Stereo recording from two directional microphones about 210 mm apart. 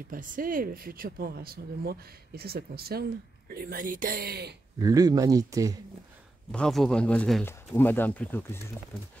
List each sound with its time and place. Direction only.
0.1 s speech: 40° right (ahead or behind)
4.7 s speech: 15° right (ahead or behind)
6.5 s speech: 5° left (ahead or behind)